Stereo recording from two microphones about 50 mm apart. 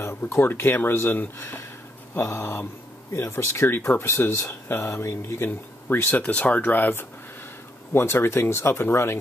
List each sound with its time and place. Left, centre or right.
0.4 s speech: left
1.4 s speech: left
3.9 s speech: left
5.5 s speech: left
6.2 s speech: left
7.9 s speech: left